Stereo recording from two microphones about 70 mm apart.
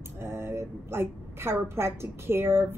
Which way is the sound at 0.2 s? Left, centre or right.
Right.